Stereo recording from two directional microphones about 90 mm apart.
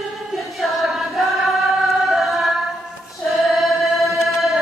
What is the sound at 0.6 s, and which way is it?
Choir, centre (ahead or behind).